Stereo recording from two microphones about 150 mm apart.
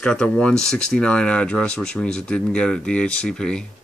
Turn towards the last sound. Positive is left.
turn(degrees=5)  # may be behind; listen again after turning